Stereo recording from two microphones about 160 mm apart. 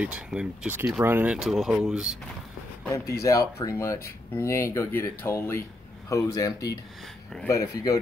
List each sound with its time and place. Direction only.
0.0 s speech: 5° right (ahead or behind)
2.9 s speech: 20° left (ahead or behind)